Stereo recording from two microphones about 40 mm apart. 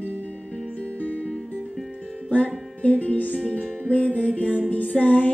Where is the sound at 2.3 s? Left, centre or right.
Left.